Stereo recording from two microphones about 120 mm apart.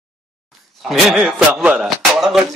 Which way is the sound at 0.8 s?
Centre (ahead or behind).